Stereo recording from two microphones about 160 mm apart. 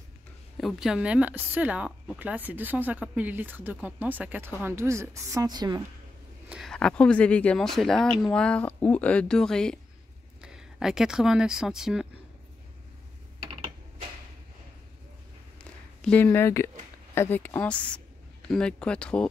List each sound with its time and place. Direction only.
0.6 s a woman's voice: centre (ahead or behind); by 5.8 s 25° right (ahead or behind)
6.5 s speech: centre (ahead or behind)
13.5 s typing: 35° right (ahead or behind)
16.0 s speech: 10° left (ahead or behind)